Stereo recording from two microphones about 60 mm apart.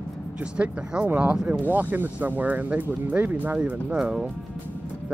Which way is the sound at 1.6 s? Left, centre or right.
Right.